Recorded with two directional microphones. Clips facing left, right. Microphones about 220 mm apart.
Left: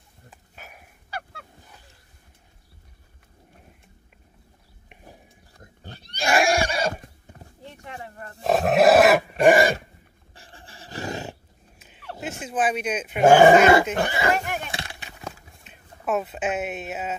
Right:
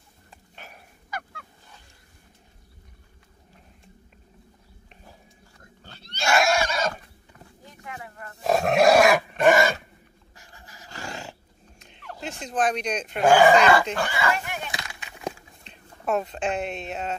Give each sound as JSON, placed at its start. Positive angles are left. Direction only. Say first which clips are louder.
{"t": 0.3, "sound": "dog", "louder": "even", "side_deg": 5}
{"t": 5.6, "sound": "neigh", "louder": "left 5 dB", "side_deg": 15}
{"t": 7.4, "sound": "a sound", "louder": "left 1 dB", "side_deg": 30}
{"t": 8.5, "sound": "dog", "louder": "left 2 dB", "side_deg": 0}
{"t": 10.3, "sound": "dog", "louder": "left 4 dB", "side_deg": 30}
{"t": 10.9, "sound": "wild animals", "louder": "left 6 dB", "side_deg": 20}
{"t": 12.2, "sound": "speech", "louder": "even", "side_deg": 5}
{"t": 13.2, "sound": "speech", "louder": "left 3 dB", "side_deg": 20}
{"t": 14.3, "sound": "a sound", "louder": "left 4 dB", "side_deg": 45}
{"t": 14.7, "sound": "a sound", "louder": "left 2 dB", "side_deg": 30}
{"t": 15.6, "sound": "speech", "louder": "even", "side_deg": 5}